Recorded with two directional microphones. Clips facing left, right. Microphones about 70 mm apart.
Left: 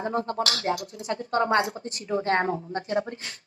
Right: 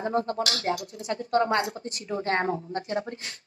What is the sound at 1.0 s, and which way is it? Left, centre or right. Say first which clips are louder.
A woman's voice: right 1 dB; left.